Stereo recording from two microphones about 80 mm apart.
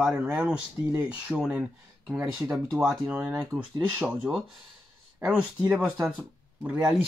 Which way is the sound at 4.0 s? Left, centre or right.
Centre.